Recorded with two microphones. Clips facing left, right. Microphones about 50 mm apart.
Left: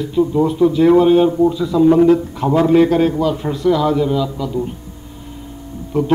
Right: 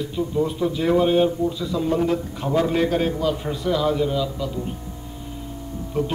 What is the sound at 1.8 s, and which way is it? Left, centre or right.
Speech, left.